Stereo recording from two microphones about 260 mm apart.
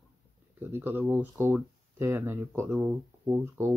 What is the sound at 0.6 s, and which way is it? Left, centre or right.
Speech, centre.